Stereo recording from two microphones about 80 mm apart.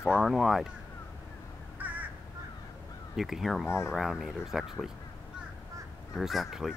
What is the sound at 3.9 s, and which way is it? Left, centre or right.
Speech, centre.